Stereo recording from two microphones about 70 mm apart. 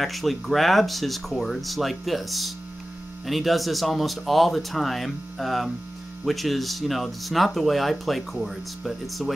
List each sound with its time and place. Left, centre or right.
0.0 s speech: centre